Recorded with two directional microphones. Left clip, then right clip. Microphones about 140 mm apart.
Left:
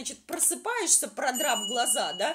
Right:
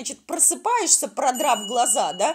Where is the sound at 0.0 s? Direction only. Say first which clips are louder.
Right 8 dB; 35° right (ahead or behind).